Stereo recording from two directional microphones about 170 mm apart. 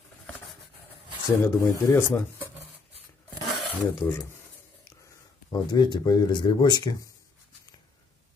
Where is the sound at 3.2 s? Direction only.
Centre (ahead or behind).